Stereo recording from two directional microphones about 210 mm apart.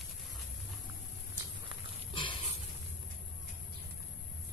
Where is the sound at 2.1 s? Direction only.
25° left (ahead or behind).